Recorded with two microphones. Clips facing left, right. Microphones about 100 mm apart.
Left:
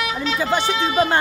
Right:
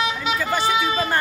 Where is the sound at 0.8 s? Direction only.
25° left (ahead or behind).